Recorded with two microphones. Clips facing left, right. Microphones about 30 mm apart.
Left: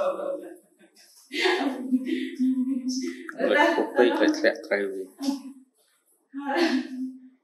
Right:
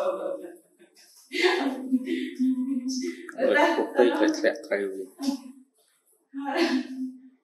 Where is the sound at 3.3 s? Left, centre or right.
Centre.